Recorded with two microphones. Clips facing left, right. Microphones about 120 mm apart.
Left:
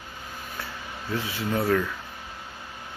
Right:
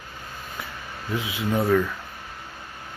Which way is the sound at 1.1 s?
20° right (ahead or behind).